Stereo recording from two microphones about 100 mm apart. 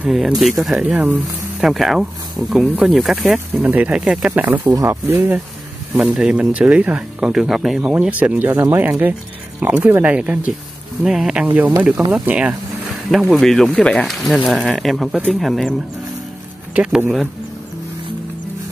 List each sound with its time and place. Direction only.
0.0 s speech: 5° right (ahead or behind)
0.8 s speech: 10° right (ahead or behind)
1.6 s speech: centre (ahead or behind)
3.5 s speech: 15° right (ahead or behind)
4.8 s speech: 25° right (ahead or behind)
5.9 s speech: 5° right (ahead or behind)
7.9 s speech: 15° right (ahead or behind)
11.4 s speech: 15° right (ahead or behind)
13.1 s speech: centre (ahead or behind)
16.7 s speech: 10° right (ahead or behind)